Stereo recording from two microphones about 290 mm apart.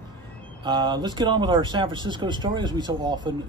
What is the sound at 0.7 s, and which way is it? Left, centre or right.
Speech, centre.